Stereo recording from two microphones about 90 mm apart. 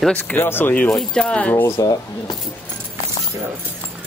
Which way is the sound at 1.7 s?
50° left (ahead or behind).